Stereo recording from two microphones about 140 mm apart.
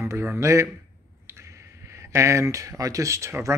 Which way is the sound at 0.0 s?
15° right (ahead or behind).